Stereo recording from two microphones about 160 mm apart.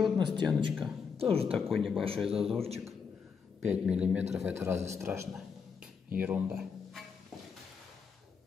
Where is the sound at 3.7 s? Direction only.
10° right (ahead or behind).